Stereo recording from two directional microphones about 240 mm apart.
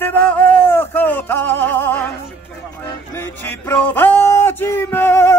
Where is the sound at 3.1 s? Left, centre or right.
Centre.